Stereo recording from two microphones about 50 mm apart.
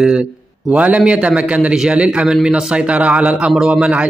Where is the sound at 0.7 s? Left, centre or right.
Right.